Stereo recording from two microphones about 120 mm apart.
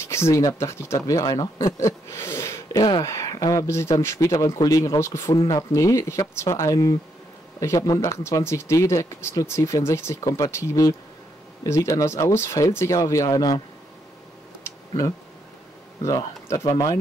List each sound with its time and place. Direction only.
0.0 s speech: 20° left (ahead or behind)
14.6 s tick-tock: 25° left (ahead or behind)
16.0 s speech: 30° left (ahead or behind)